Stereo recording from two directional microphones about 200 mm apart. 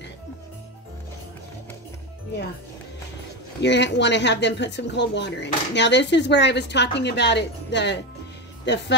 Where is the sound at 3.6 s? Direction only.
60° left (ahead or behind).